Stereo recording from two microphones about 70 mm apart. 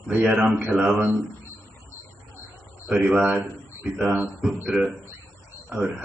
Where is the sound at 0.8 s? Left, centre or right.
Right.